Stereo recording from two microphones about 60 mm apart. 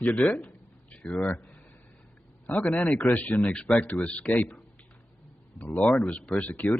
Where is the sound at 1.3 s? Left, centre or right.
Left.